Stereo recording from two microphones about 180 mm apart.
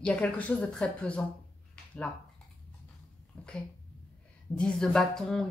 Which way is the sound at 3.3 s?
5° left (ahead or behind).